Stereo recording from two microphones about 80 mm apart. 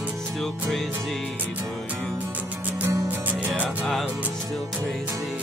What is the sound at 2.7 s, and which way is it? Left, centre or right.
Music, right.